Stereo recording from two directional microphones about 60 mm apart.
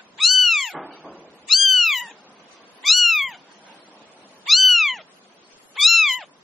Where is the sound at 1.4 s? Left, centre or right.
Centre.